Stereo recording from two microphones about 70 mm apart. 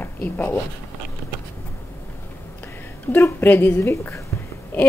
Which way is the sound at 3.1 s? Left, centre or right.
Left.